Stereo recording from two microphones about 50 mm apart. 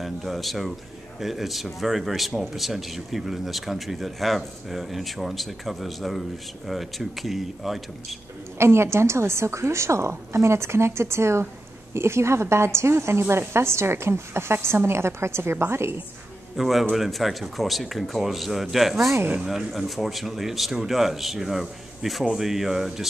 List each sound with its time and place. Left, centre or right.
0.0 s speech: centre
8.5 s a woman's voice: right
16.5 s speech: centre